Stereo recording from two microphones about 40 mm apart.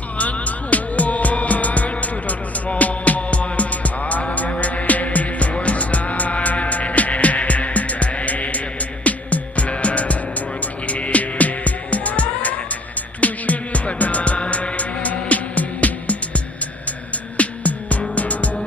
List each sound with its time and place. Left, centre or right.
0.2 s music: left